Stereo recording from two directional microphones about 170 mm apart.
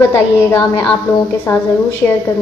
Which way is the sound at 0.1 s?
15° left (ahead or behind).